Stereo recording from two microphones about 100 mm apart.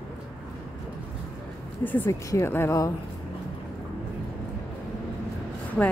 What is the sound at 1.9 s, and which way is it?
Speech, 25° left (ahead or behind).